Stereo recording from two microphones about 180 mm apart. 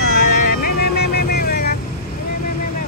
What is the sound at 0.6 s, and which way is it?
Vehicle, 60° left (ahead or behind).